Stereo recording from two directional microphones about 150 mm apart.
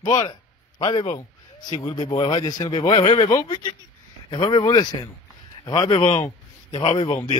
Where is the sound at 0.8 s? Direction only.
30° left (ahead or behind).